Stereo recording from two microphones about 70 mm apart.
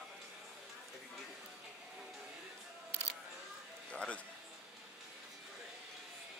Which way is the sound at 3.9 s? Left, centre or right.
Centre.